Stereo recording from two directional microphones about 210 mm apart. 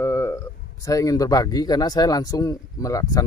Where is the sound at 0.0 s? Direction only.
15° left (ahead or behind).